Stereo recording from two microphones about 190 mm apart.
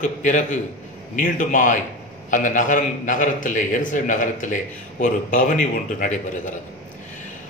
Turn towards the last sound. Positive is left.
turn(degrees=40)  # may be behind; listen again after turning